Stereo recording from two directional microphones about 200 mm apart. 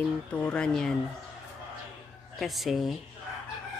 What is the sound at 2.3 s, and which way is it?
Speech, centre (ahead or behind).